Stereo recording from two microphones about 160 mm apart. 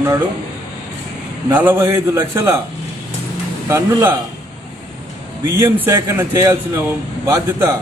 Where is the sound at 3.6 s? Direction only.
15° right (ahead or behind).